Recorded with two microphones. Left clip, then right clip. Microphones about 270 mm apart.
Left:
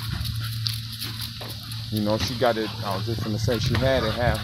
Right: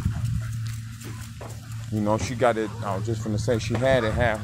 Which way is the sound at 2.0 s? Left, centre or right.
Centre.